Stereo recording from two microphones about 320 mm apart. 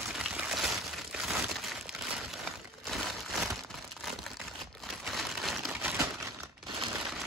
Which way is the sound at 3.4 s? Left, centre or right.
Centre.